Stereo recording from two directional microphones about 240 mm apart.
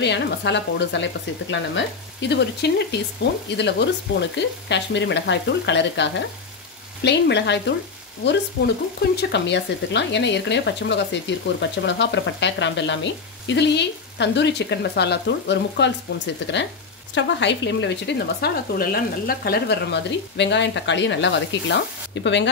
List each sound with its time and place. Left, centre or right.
0.0 s speech: left